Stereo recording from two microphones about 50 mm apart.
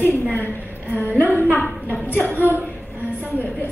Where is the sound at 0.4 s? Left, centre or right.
Left.